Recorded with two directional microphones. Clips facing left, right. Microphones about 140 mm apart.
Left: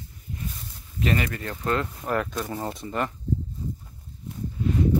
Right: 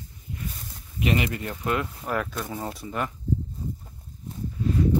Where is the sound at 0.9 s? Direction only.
15° right (ahead or behind).